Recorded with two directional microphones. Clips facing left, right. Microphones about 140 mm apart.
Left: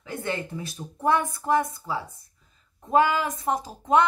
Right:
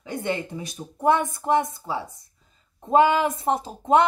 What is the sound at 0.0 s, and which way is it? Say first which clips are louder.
Speech: right 3 dB; 20° right (ahead or behind).